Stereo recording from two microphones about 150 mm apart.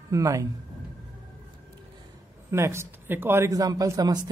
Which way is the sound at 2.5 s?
15° right (ahead or behind).